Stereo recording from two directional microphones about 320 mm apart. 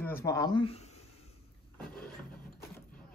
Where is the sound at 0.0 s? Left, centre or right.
Centre.